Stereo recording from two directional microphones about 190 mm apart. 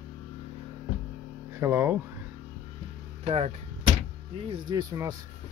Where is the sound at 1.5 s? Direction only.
10° right (ahead or behind).